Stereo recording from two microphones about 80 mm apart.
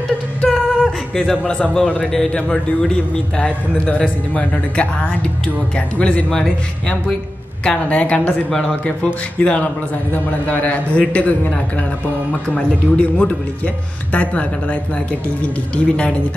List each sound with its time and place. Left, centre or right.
0.4 s a sound: centre
1.1 s a man's voice: centre
8.5 s a man's voice: centre
8.8 s a man's voice: centre